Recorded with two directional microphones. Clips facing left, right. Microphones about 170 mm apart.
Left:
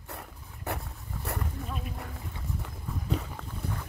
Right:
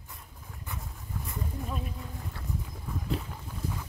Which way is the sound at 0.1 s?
65° left (ahead or behind).